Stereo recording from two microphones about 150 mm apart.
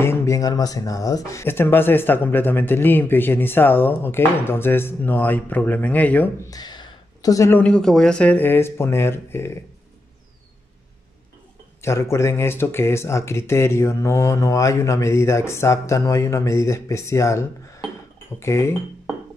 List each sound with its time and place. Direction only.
0.0 s speech: 15° left (ahead or behind)
6.5 s speech: 30° left (ahead or behind)
11.8 s speech: 20° left (ahead or behind)